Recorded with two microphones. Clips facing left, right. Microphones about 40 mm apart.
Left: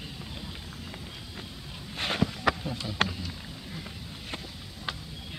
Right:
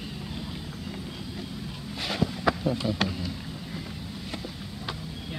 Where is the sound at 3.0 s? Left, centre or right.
Left.